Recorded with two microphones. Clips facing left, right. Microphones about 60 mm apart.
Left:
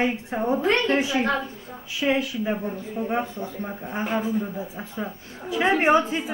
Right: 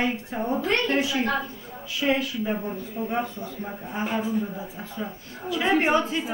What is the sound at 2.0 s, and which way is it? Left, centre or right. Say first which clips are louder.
Speech: left 1 dB; centre.